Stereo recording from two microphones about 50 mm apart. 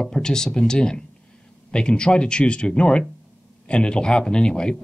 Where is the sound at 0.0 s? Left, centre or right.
Centre.